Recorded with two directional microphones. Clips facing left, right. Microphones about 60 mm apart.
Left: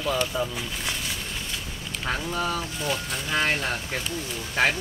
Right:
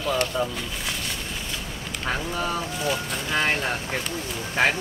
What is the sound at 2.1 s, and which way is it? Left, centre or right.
Speech, centre.